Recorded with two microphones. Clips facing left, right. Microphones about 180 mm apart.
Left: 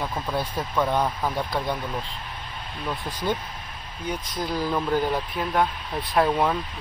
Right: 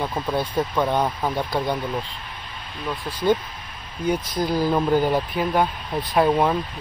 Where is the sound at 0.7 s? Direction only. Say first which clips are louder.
Left 1 dB; 10° right (ahead or behind).